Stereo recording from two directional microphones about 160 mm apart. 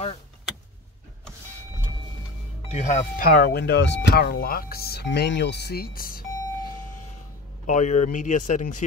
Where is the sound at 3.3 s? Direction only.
85° left; by 6.2 s 65° left (ahead or behind).